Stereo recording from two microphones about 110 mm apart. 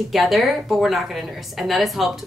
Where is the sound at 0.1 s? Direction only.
Centre (ahead or behind).